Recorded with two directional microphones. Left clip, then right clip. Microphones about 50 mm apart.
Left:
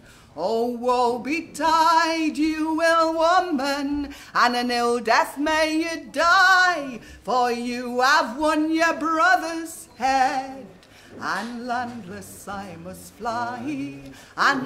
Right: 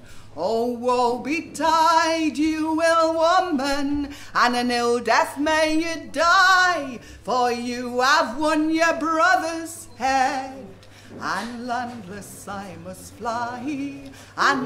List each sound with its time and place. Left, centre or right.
0.4 s music: right